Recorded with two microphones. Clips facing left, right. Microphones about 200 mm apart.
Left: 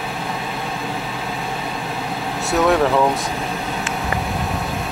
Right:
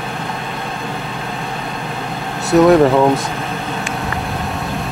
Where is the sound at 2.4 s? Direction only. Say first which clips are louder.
Right 7 dB; centre (ahead or behind).